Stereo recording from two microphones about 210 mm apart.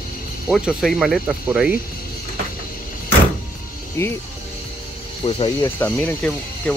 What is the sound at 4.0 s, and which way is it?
Speech, 15° left (ahead or behind).